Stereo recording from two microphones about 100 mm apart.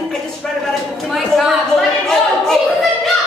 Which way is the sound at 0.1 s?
5° left (ahead or behind).